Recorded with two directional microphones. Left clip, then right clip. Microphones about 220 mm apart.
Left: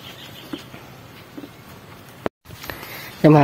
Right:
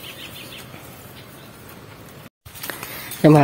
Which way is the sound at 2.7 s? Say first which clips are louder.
Right 1 dB; centre (ahead or behind).